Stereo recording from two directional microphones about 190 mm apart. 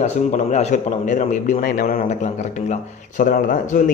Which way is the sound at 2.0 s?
35° left (ahead or behind).